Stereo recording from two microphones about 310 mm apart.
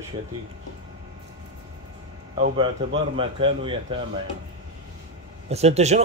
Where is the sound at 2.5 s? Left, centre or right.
Centre.